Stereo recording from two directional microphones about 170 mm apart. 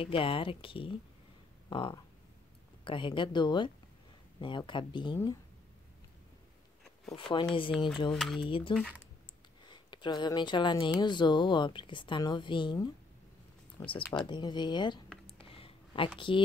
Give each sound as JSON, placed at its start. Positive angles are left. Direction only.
{"t": 0.0, "sound": "speech", "side_deg": 30}
{"t": 1.7, "sound": "a sound", "side_deg": 30}
{"t": 2.8, "sound": "speech", "side_deg": 30}
{"t": 7.2, "sound": "speech", "side_deg": 30}
{"t": 8.1, "sound": "speech", "side_deg": 0}
{"t": 8.4, "sound": "speech", "side_deg": 30}
{"t": 8.7, "sound": "speech", "side_deg": -5}
{"t": 9.7, "sound": "speech", "side_deg": 25}
{"t": 15.2, "sound": "a sound", "side_deg": 30}
{"t": 16.2, "sound": "speech", "side_deg": 30}